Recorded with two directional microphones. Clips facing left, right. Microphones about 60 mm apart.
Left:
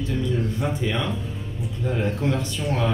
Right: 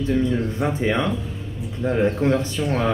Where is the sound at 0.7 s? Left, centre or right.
Right.